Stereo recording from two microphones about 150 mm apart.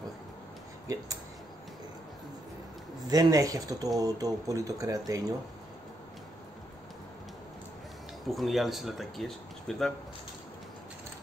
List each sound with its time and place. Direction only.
3.1 s speech: 25° right (ahead or behind)
8.3 s speech: centre (ahead or behind)